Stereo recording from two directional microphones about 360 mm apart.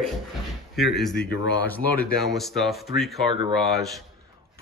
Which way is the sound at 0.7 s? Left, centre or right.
Centre.